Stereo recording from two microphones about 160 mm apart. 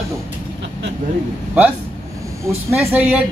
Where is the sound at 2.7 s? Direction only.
5° right (ahead or behind).